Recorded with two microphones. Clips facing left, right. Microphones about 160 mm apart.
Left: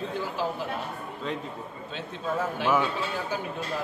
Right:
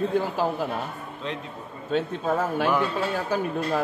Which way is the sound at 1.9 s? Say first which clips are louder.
Right 8 dB; 50° right (ahead or behind).